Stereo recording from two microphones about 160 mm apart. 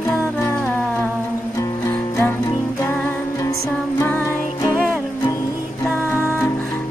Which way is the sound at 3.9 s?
15° left (ahead or behind).